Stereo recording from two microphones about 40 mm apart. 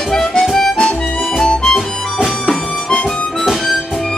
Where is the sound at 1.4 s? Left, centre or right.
Centre.